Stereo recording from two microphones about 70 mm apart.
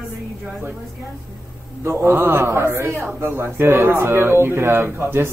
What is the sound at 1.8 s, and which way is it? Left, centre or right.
Speech, right.